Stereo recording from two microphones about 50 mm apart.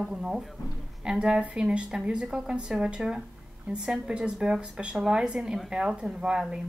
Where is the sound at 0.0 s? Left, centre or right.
Centre.